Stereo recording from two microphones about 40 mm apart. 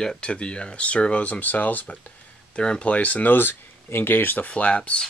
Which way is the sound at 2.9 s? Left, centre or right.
Left.